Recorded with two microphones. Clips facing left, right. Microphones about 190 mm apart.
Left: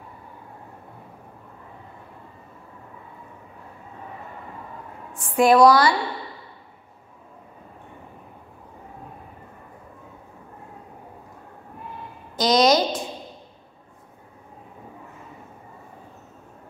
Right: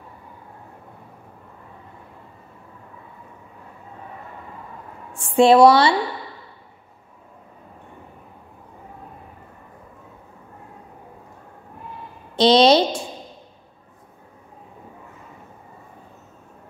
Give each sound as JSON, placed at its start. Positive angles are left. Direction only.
{"t": 5.1, "sound": "a woman's voice", "side_deg": -25}
{"t": 12.4, "sound": "a woman's voice", "side_deg": -30}